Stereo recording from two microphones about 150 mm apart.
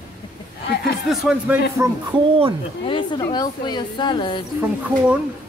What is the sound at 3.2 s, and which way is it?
A woman's voice, 25° left (ahead or behind).